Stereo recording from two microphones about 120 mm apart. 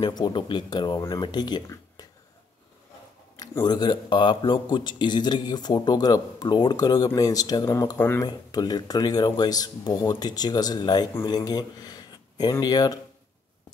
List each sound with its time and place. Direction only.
0.0 s a man's voice: 35° left (ahead or behind)
3.6 s a man's voice: 35° left (ahead or behind)